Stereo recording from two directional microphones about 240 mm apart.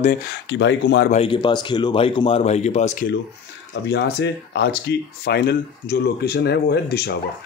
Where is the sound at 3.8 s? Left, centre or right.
Left.